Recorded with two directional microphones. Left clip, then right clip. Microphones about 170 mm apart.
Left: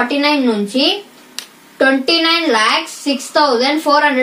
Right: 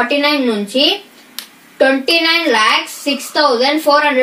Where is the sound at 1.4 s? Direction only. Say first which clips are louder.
Left 1 dB; 25° left (ahead or behind).